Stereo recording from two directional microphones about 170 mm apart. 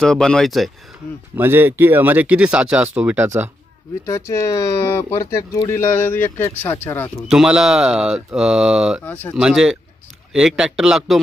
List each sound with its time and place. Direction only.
0.0 s speech: 5° left (ahead or behind)
1.3 s speech: 15° right (ahead or behind)
4.0 s speech: 15° left (ahead or behind)
7.2 s speech: 5° right (ahead or behind)
9.0 s speech: 10° left (ahead or behind)
9.4 s speech: 5° right (ahead or behind)